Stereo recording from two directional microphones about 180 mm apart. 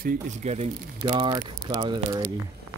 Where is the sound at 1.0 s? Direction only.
25° right (ahead or behind).